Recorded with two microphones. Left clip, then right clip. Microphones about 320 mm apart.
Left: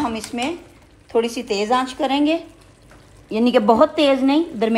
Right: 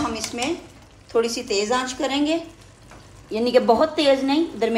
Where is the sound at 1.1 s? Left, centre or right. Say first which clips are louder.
Left 1 dB; left.